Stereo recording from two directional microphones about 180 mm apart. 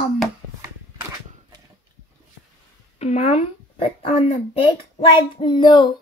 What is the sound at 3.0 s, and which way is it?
Speech, 35° left (ahead or behind).